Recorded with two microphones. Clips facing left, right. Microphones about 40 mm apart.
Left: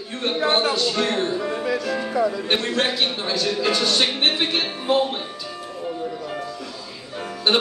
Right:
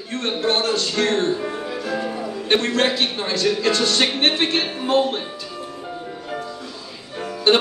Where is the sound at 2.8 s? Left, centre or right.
Centre.